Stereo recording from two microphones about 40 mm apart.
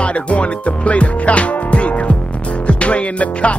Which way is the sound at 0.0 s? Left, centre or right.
Left.